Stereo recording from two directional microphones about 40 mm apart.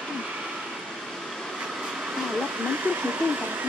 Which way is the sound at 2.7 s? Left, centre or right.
Right.